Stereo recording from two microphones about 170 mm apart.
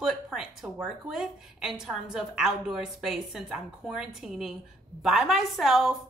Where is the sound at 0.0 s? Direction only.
5° right (ahead or behind).